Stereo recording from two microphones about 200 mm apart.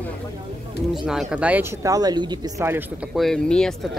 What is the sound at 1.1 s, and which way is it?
Speech, 5° right (ahead or behind).